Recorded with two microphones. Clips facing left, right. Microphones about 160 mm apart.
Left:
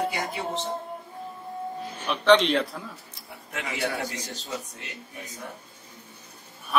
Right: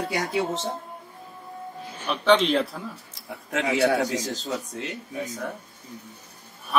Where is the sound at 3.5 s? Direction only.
85° right.